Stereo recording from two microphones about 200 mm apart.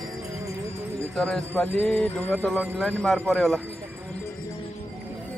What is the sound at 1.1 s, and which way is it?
Jingle bell, 5° left (ahead or behind).